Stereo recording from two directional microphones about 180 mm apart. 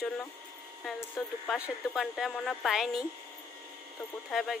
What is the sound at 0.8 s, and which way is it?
Speech, centre (ahead or behind).